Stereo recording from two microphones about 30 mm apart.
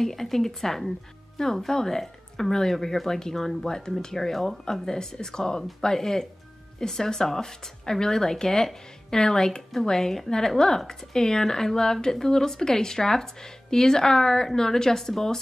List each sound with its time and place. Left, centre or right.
0.0 s speech: centre
1.4 s speech: left
4.6 s speech: centre